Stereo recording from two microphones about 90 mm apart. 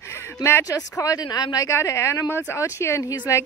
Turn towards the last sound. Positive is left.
turn(degrees=35)  # may be behind; listen again after turning